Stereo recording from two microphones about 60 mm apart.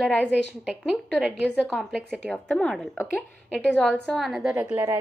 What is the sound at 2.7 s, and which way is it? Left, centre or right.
Speech, centre.